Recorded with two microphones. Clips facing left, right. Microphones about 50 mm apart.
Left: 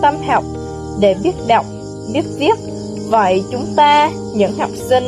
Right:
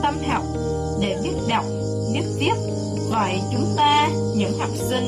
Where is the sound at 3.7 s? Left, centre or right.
Left.